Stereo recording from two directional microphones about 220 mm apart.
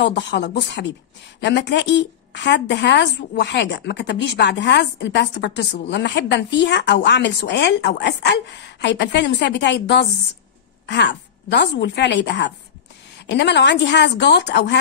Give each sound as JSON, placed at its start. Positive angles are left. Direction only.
{"t": 0.0, "sound": "a woman's voice", "side_deg": 50}
{"t": 11.1, "sound": "a woman's voice", "side_deg": 50}